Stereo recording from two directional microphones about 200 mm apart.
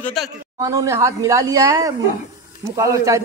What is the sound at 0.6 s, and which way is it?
Speech, 15° right (ahead or behind).